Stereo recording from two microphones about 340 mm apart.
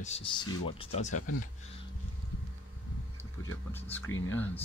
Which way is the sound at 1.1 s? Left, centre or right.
Left.